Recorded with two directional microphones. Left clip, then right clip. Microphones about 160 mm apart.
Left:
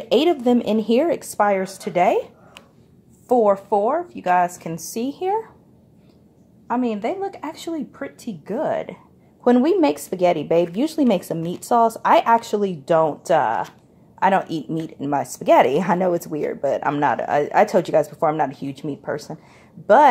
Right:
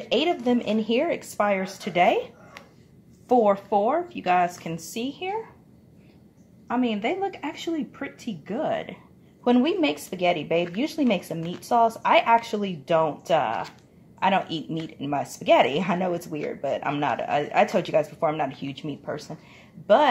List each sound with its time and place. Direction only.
0.1 s a woman's voice: 45° left (ahead or behind); by 4.5 s 25° left (ahead or behind)
4.7 s a woman's voice: 45° left (ahead or behind)
6.7 s a woman's voice: 30° left (ahead or behind)